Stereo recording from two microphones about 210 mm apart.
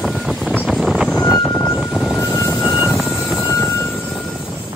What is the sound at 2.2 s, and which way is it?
Vehicle, 15° left (ahead or behind).